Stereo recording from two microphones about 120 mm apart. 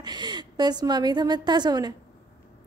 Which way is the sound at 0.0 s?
35° right (ahead or behind).